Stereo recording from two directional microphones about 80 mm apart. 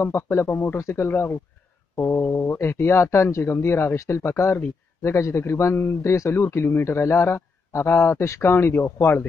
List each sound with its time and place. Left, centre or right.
0.0 s a man's voice: left